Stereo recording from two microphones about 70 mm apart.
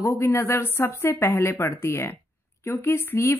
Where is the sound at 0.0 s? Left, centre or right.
Left.